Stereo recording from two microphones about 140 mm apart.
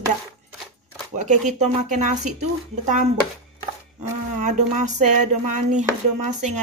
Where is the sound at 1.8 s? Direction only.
60° right (ahead or behind).